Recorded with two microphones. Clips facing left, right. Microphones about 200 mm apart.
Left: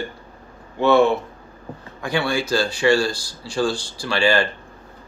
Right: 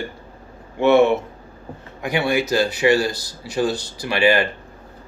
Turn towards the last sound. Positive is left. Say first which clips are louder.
# right 2 dB
turn(degrees=-20)  # may be behind; listen again after turning